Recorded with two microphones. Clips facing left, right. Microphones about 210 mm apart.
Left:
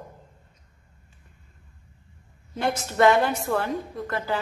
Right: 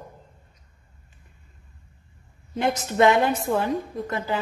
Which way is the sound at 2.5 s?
20° right (ahead or behind).